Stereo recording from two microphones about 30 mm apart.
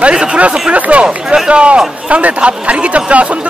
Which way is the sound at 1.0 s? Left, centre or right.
Right.